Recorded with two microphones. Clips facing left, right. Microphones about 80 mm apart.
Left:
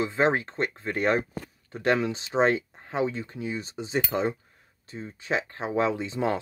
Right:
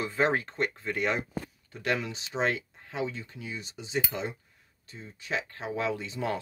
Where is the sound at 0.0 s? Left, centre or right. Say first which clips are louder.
Left 3 dB; left.